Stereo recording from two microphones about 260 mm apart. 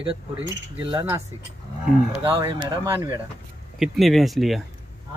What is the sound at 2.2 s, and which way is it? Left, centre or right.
Speech, centre.